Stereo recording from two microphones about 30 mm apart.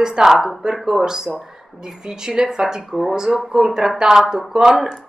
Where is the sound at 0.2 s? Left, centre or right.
Centre.